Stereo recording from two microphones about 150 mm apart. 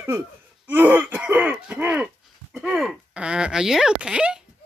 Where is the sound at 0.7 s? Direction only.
10° right (ahead or behind).